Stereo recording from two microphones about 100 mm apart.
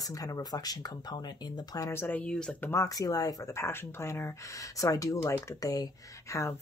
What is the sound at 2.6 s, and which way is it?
Speech, 25° left (ahead or behind).